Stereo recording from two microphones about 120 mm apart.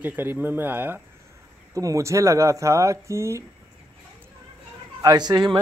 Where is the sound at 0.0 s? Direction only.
15° right (ahead or behind).